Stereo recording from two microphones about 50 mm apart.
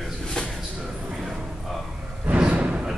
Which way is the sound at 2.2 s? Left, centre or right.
Right.